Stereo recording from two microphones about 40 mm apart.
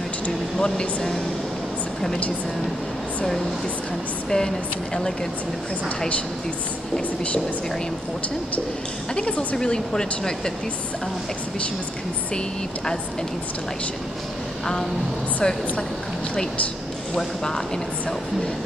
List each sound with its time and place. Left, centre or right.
0.6 s speech: centre
4.3 s speech: centre
9.1 s a woman's voice: left
9.6 s speech: centre
15.4 s a woman's voice: centre
17.2 s speech: centre